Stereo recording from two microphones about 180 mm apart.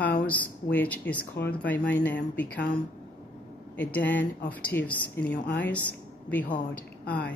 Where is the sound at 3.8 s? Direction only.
10° left (ahead or behind).